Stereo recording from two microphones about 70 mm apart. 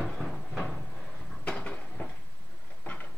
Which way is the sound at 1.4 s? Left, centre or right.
Centre.